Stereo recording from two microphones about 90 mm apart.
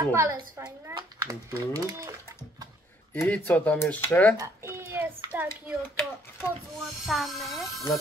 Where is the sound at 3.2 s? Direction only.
15° left (ahead or behind).